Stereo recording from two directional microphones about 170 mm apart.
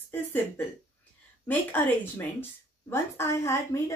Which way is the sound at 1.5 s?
10° left (ahead or behind).